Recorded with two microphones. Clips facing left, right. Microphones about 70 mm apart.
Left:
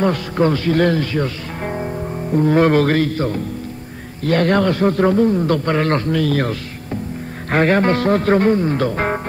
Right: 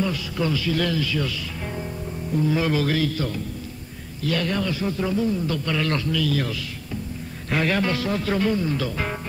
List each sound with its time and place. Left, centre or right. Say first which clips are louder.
0.0 s a man's voice: left 8 dB; left
2.3 s a man's voice: left 9 dB; left
7.5 s a man's voice: left 8 dB; left